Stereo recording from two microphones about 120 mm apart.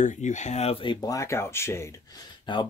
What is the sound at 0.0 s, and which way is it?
Speech, 85° left.